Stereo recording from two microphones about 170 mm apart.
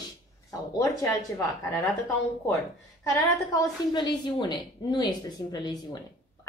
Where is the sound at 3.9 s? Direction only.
25° left (ahead or behind).